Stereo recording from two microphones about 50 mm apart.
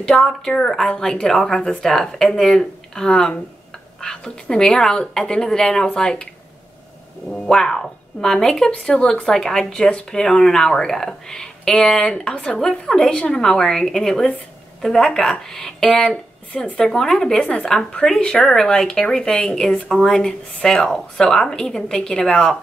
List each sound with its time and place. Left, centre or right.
0.0 s a woman's voice: centre
7.2 s a woman's voice: centre